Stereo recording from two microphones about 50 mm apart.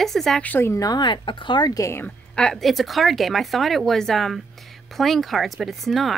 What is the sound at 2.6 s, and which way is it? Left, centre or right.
Speech, centre.